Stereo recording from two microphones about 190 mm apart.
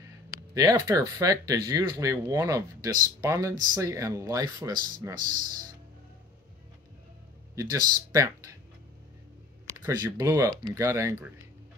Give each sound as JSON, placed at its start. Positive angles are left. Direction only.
{"t": 0.6, "sound": "speech", "side_deg": -20}
{"t": 7.5, "sound": "speech", "side_deg": -20}
{"t": 9.8, "sound": "speech", "side_deg": -15}